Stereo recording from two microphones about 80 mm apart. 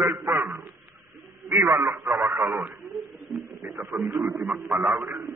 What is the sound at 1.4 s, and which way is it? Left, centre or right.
A man's voice, right.